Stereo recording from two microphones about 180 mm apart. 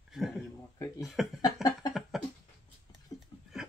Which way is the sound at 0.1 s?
Centre (ahead or behind).